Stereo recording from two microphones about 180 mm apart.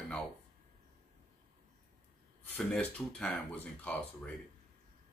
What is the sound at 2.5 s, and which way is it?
Speech, 5° left (ahead or behind).